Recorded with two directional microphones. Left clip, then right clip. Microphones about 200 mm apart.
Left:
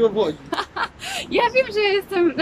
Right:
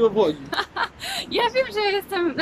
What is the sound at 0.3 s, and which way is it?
A woman's voice, 5° left (ahead or behind).